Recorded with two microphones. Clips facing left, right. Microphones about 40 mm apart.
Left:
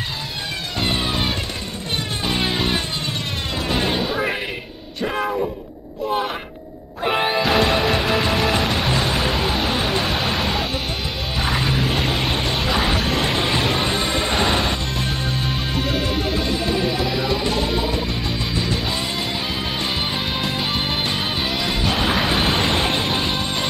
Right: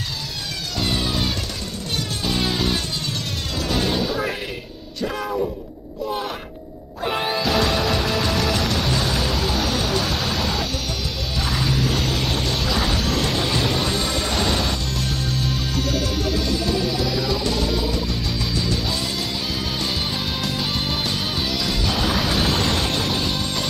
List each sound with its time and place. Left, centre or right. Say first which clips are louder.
0.7 s music: left 1 dB; left
5.0 s bellow: left 3 dB; left
7.0 s music: left 3 dB; left
20.4 s music: left 2 dB; left